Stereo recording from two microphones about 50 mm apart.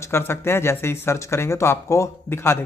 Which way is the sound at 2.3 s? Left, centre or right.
Left.